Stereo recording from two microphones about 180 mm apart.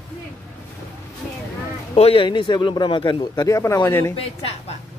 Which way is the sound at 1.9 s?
30° left (ahead or behind).